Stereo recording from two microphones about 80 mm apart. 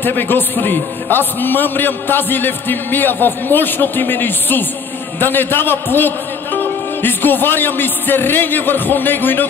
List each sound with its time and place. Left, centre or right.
0.0 s a man's voice: left